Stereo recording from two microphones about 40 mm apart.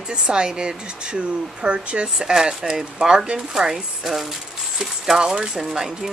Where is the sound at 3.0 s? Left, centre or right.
Right.